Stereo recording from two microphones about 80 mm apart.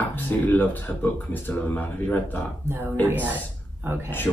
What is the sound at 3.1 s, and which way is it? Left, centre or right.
Speech, right.